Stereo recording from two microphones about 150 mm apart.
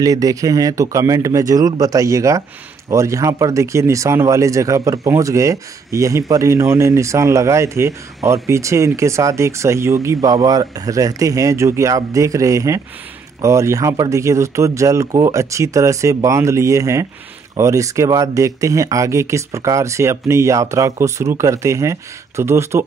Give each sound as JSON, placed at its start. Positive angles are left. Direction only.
{"t": 0.0, "sound": "speech", "side_deg": -25}